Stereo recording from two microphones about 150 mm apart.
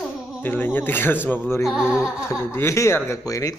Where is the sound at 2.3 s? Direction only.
15° left (ahead or behind).